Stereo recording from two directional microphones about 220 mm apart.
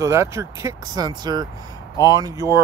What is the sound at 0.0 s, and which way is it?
Speech, 15° right (ahead or behind).